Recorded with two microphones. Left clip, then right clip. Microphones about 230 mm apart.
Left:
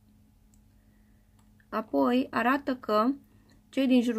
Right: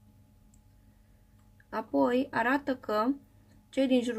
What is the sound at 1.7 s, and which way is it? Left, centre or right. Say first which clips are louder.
Speech: left 1 dB; left.